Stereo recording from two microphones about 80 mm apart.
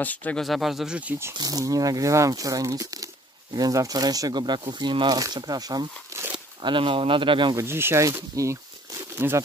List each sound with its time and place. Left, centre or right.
0.0 s speech: centre
0.4 s speech: centre
1.4 s speech: right
6.6 s speech: right
7.5 s speech: right
8.4 s speech: right
9.2 s speech: right